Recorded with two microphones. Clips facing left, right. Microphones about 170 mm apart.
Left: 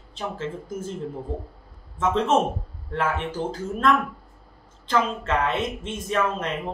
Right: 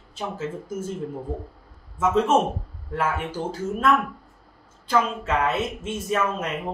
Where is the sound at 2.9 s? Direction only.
10° right (ahead or behind).